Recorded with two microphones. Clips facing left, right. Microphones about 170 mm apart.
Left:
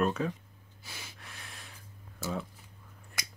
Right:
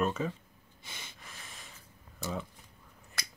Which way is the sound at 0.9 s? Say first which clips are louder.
Left 1 dB; 5° left (ahead or behind).